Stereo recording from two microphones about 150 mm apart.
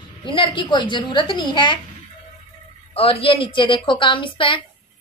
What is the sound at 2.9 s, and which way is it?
A woman's voice, 40° left (ahead or behind).